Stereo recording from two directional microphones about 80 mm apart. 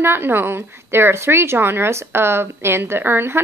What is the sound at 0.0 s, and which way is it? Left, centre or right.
A woman's voice, right.